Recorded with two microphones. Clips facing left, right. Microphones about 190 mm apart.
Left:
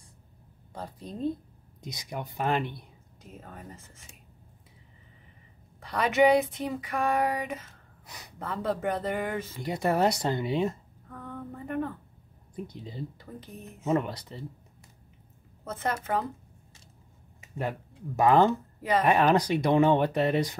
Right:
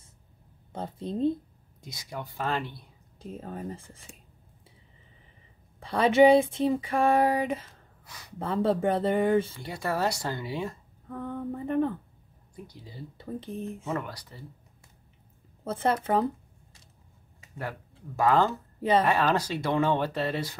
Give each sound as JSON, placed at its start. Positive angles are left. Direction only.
{"t": 0.7, "sound": "speech", "side_deg": -25}
{"t": 1.8, "sound": "speech", "side_deg": 20}
{"t": 3.2, "sound": "speech", "side_deg": -30}
{"t": 5.8, "sound": "speech", "side_deg": -30}
{"t": 9.7, "sound": "speech", "side_deg": 20}
{"t": 11.1, "sound": "a sound", "side_deg": -30}
{"t": 12.5, "sound": "speech", "side_deg": 20}
{"t": 13.2, "sound": "speech", "side_deg": -30}
{"t": 13.8, "sound": "speech", "side_deg": 20}
{"t": 15.6, "sound": "speech", "side_deg": -30}
{"t": 17.4, "sound": "speech", "side_deg": 20}
{"t": 18.8, "sound": "a woman's voice", "side_deg": -30}
{"t": 19.0, "sound": "speech", "side_deg": 20}